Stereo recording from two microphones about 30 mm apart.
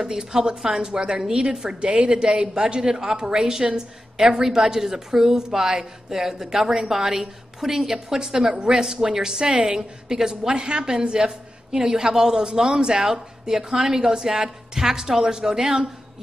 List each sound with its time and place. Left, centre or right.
0.0 s a woman's voice: centre
1.8 s a woman's voice: right; by 9.4 s centre
9.4 s a woman's voice: right